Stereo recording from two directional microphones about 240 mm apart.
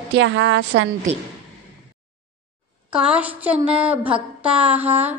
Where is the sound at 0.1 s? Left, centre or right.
Right.